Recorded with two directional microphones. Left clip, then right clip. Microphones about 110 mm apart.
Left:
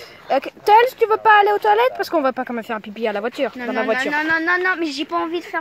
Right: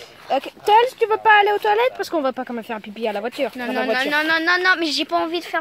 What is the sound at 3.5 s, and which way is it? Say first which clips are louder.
Speech: left 1 dB; 50° right (ahead or behind).